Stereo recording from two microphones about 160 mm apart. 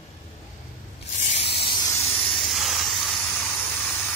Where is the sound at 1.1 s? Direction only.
40° left (ahead or behind).